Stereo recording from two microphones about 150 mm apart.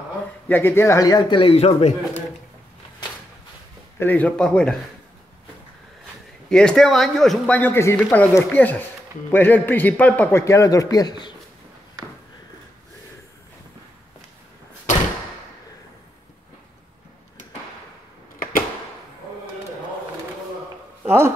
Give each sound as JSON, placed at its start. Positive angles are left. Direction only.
{"t": 0.5, "sound": "a man's voice", "side_deg": 15}
{"t": 4.0, "sound": "a man's voice", "side_deg": 10}
{"t": 6.5, "sound": "speech", "side_deg": 5}
{"t": 21.0, "sound": "a sound", "side_deg": -15}